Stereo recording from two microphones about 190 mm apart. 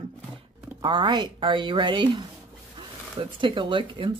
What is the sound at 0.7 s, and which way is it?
Speech, 25° right (ahead or behind).